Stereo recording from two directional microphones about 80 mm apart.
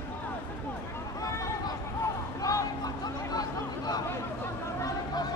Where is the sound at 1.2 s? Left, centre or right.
Left.